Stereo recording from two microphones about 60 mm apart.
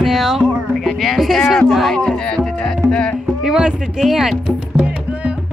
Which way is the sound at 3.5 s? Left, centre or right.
Centre.